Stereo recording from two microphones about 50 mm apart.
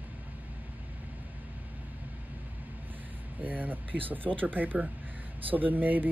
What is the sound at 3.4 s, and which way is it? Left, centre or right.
Speech, right.